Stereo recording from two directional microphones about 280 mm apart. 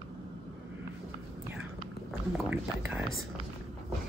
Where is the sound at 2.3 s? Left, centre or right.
Centre.